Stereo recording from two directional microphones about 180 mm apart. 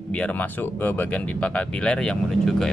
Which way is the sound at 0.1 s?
10° left (ahead or behind).